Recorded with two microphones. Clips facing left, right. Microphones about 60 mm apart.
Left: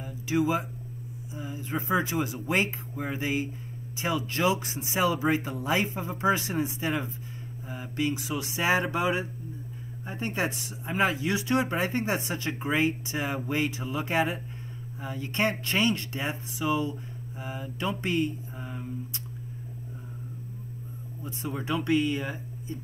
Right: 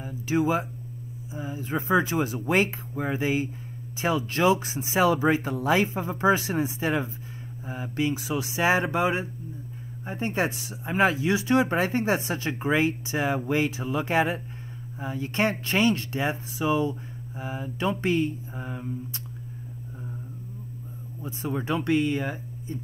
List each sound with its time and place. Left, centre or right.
0.0 s speech: right
13.8 s speech: right
21.3 s speech: right